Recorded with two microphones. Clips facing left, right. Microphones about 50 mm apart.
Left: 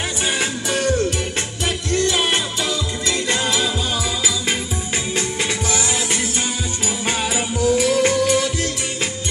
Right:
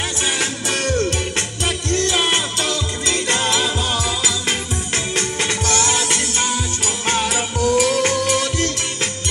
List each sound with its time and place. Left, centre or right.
0.4 s music: centre
2.1 s music: centre
5.1 s music: centre